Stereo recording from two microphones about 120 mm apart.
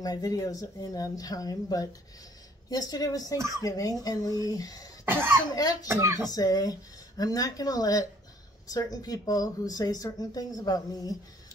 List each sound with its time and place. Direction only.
0.0 s speech: 30° left (ahead or behind)
5.0 s speech: 15° right (ahead or behind)
5.5 s speech: 30° left (ahead or behind)
5.9 s speech: 25° right (ahead or behind)
6.2 s speech: 30° left (ahead or behind)